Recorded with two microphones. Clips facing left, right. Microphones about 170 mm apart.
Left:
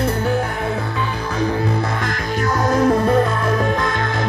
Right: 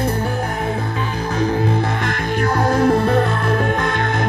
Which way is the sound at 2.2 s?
55° right (ahead or behind).